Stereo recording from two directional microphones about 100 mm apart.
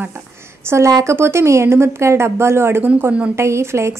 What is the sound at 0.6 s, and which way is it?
A woman's voice, 30° right (ahead or behind).